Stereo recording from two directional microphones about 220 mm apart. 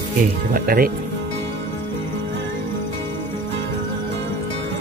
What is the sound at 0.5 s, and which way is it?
Speech, 40° right (ahead or behind).